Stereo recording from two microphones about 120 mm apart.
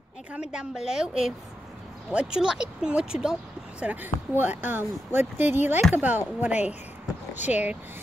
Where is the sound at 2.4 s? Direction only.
5° right (ahead or behind).